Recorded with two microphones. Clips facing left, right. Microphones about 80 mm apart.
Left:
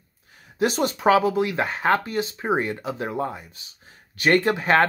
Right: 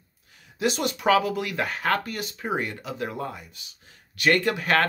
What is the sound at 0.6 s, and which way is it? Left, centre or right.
Speech, left.